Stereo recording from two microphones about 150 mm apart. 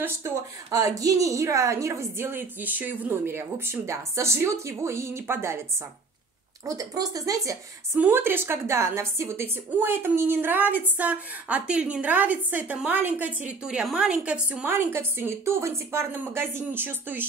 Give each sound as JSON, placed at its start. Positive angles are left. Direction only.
{"t": 0.0, "sound": "a woman's voice", "side_deg": -20}
{"t": 6.6, "sound": "a woman's voice", "side_deg": -25}